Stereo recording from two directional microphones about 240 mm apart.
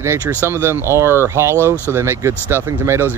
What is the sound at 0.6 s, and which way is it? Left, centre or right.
Speech, centre.